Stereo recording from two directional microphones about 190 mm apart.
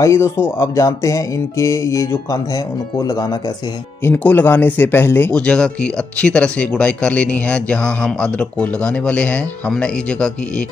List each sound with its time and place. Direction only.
0.0 s speech: 15° left (ahead or behind)